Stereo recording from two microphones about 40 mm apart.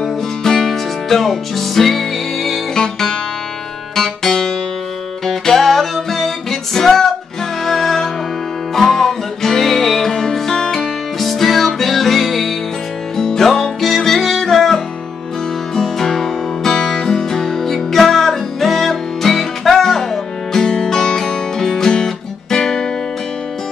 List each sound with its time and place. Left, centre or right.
0.0 s music: centre
2.7 s music: centre
13.1 s music: centre
16.7 s music: centre